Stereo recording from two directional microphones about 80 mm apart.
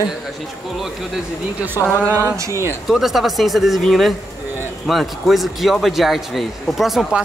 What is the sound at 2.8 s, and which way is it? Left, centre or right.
A man's voice, centre.